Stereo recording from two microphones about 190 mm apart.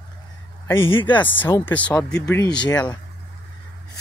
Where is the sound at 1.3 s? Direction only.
10° left (ahead or behind).